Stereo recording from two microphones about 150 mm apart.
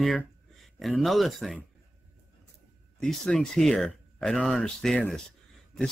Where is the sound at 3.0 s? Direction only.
5° left (ahead or behind).